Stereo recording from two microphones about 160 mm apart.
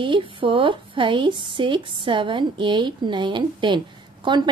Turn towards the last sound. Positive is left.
turn(degrees=-30)  # may be behind; listen again after turning